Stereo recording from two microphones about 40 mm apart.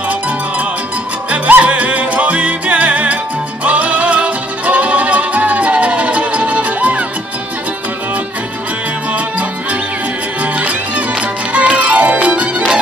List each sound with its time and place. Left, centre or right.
1.3 s music: right
9.1 s music: right